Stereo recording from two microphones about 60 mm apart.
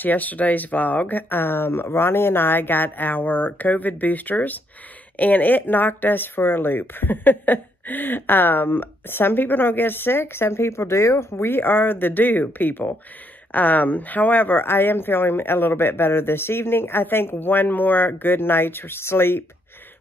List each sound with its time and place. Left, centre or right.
0.0 s speech: left